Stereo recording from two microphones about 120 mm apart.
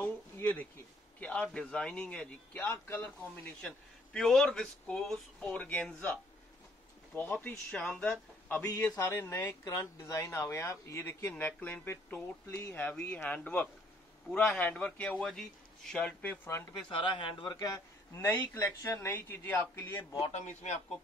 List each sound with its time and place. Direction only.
0.0 s a sound: 15° left (ahead or behind)
1.2 s speech: 10° left (ahead or behind)
7.2 s a man's voice: 15° left (ahead or behind)
16.9 s speech: 45° left (ahead or behind); by 20.0 s 20° left (ahead or behind)
20.0 s a man's voice: 35° left (ahead or behind)
20.3 s a man's voice: 75° left (ahead or behind)